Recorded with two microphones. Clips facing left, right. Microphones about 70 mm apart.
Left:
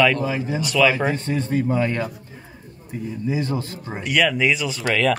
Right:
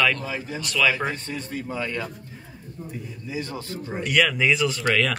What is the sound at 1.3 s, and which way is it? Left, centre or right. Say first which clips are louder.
Speech: left 9 dB; left.